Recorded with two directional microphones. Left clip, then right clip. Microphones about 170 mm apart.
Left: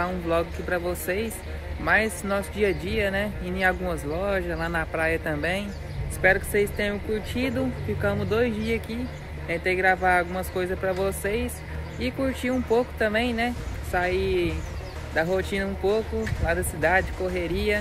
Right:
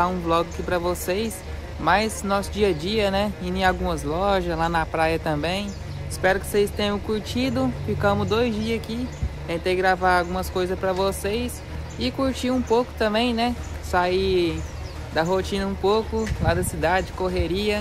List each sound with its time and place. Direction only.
0.0 s speech: 15° right (ahead or behind)